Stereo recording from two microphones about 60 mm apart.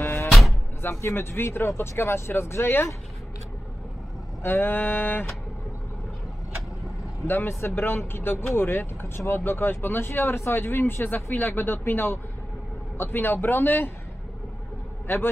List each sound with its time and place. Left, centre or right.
0.3 s door: centre
0.8 s speech: left
4.4 s speech: left
7.2 s speech: left
15.1 s speech: left